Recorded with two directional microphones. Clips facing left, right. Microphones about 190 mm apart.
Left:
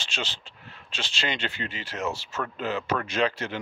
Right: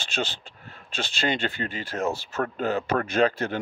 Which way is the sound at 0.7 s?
50° right (ahead or behind).